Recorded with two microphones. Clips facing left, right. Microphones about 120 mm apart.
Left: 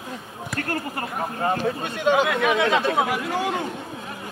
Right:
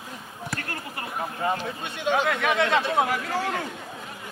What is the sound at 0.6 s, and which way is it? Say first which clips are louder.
Speech: left 7 dB; 45° left (ahead or behind).